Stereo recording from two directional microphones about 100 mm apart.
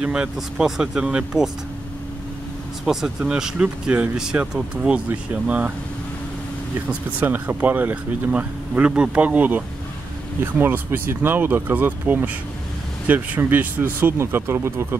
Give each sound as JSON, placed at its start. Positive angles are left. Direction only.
{"t": 0.0, "sound": "speech", "side_deg": -10}
{"t": 2.8, "sound": "speech", "side_deg": -5}
{"t": 6.9, "sound": "speech", "side_deg": -15}